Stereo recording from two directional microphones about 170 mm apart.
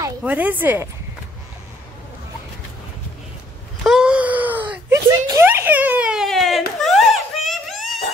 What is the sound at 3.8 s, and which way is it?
Wail, 5° right (ahead or behind).